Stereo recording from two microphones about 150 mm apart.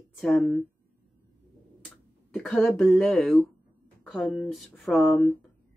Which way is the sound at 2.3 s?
10° left (ahead or behind).